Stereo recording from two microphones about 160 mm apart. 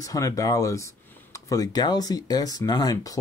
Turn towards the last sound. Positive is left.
turn(degrees=20)  # may be behind; listen again after turning